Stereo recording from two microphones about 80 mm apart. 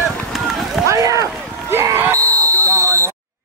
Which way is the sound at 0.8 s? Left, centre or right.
Right.